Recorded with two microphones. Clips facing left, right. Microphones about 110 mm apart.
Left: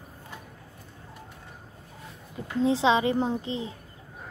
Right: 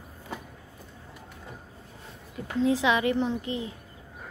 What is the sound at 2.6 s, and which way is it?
A woman's voice, 25° left (ahead or behind).